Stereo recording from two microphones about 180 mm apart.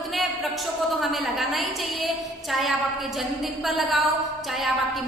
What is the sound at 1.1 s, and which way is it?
A woman's voice, centre (ahead or behind).